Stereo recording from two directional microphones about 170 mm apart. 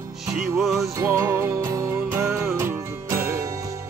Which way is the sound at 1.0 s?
15° right (ahead or behind).